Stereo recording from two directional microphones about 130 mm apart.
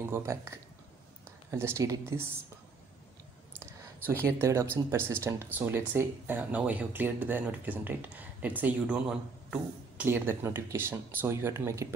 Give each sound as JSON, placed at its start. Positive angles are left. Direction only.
{"t": 0.0, "sound": "speech", "side_deg": -20}
{"t": 3.5, "sound": "speech", "side_deg": -20}
{"t": 10.0, "sound": "speech", "side_deg": -15}